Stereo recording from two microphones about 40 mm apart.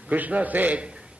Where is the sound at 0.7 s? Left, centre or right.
Right.